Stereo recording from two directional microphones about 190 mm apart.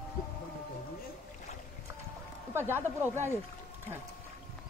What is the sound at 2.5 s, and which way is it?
Speech, 10° right (ahead or behind).